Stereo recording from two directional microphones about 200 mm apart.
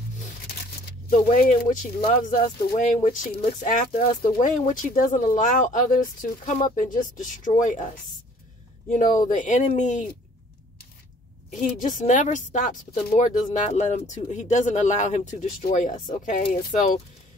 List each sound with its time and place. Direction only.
0.5 s speech: 45° left (ahead or behind)
9.3 s speech: 40° left (ahead or behind)
11.5 s speech: 40° left (ahead or behind)